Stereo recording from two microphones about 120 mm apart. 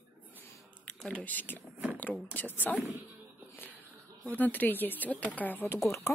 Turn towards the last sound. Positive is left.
turn(degrees=20)  # may be behind; listen again after turning